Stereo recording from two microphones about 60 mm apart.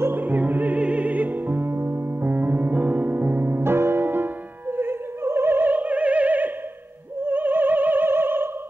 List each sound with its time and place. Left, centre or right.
0.0 s music: right
7.2 s opera: right